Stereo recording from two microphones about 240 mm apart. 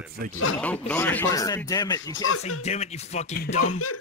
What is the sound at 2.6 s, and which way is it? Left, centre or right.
Speech, left.